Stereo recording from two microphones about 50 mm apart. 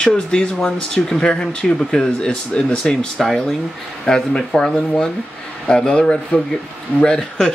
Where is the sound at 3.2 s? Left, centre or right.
Centre.